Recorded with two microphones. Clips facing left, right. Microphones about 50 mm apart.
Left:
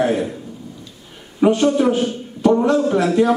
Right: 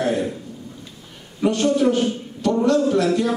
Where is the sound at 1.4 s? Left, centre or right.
Left.